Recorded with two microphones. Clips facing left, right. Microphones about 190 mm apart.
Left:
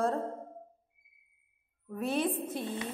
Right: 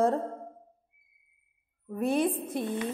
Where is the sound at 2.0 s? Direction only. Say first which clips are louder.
Right 5 dB; 50° right (ahead or behind).